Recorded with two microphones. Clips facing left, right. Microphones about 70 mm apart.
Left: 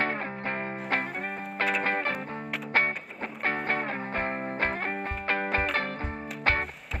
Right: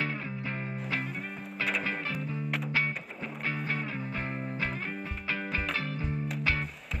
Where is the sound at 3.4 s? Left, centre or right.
Left.